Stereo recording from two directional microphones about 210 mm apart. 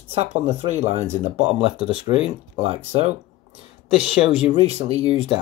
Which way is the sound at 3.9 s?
Centre (ahead or behind).